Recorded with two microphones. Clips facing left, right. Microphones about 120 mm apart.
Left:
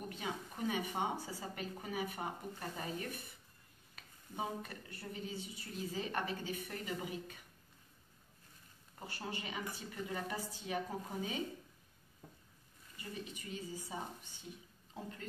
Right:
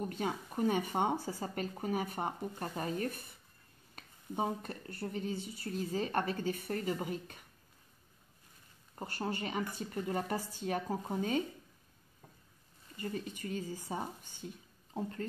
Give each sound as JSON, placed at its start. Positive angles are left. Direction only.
{"t": 0.1, "sound": "speech", "side_deg": -45}
{"t": 8.9, "sound": "speech", "side_deg": -45}
{"t": 12.9, "sound": "speech", "side_deg": -50}